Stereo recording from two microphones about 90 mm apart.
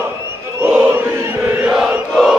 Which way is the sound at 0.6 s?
20° right (ahead or behind).